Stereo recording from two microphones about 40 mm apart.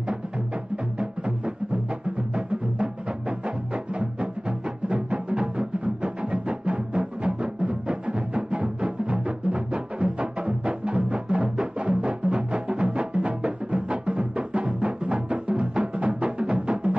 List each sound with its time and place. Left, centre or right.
0.9 s music: right